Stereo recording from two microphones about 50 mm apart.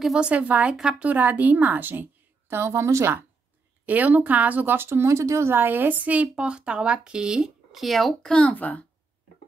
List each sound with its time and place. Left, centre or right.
0.1 s a woman's voice: right
0.7 s speech: centre
1.0 s a woman's voice: right
3.8 s a woman's voice: right
5.0 s a woman's voice: right; by 7.5 s centre
7.7 s a child's voice: centre
8.4 s a child's voice: left